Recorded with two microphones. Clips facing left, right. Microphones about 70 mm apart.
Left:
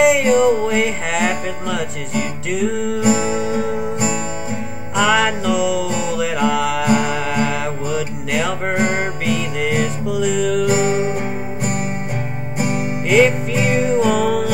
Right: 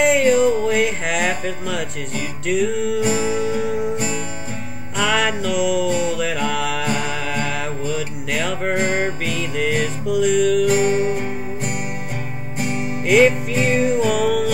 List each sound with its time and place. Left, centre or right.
0.0 s music: centre
3.0 s music: centre
4.9 s music: centre
10.7 s music: centre
13.1 s music: centre